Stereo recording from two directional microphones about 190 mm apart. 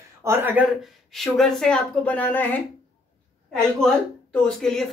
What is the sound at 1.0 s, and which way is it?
A woman's voice, centre (ahead or behind).